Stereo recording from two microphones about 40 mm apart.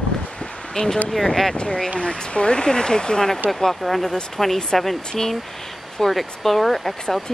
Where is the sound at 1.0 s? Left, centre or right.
Centre.